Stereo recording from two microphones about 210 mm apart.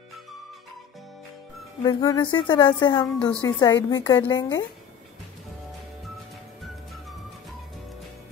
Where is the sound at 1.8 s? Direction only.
20° left (ahead or behind).